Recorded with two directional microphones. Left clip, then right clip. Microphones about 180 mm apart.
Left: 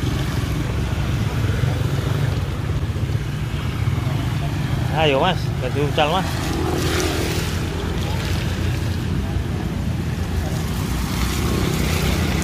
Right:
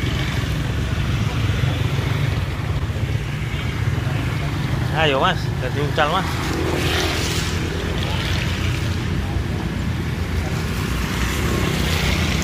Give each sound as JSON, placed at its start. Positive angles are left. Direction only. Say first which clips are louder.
{"t": 4.9, "sound": "speech", "louder": "even", "side_deg": 25}
{"t": 6.9, "sound": "vehicle", "louder": "right 2 dB", "side_deg": 70}